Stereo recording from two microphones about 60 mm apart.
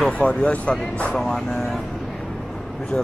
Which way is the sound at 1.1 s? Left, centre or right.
Centre.